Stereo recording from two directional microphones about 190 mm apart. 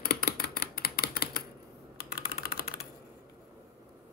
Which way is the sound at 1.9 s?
55° left (ahead or behind).